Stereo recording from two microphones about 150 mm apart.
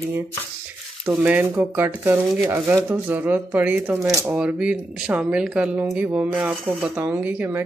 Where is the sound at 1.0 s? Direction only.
10° right (ahead or behind).